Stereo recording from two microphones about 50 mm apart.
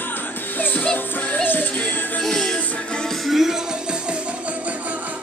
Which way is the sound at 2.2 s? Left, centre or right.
Centre.